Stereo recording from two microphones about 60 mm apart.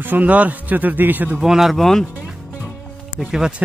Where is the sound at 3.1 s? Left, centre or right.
Centre.